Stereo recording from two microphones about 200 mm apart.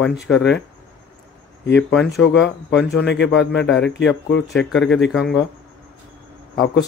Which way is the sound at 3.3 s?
65° left (ahead or behind).